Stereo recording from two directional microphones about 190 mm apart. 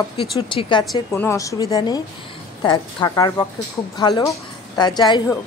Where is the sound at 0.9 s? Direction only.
10° left (ahead or behind).